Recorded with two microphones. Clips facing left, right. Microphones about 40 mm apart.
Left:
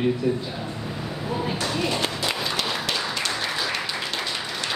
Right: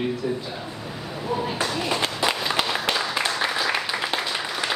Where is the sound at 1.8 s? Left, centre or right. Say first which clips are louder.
Left 1 dB; centre.